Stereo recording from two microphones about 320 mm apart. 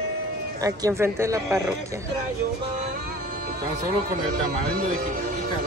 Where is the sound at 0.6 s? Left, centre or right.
Centre.